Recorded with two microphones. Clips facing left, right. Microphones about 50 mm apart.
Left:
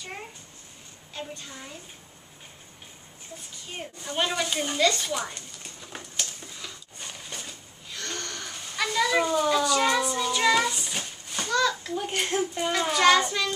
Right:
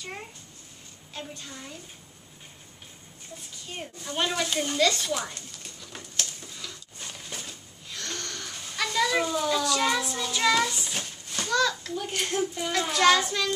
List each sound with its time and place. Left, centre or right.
1.1 s a child's voice: centre
3.7 s speech: centre
6.1 s a sound: centre
12.3 s speech: left
12.7 s a child's voice: centre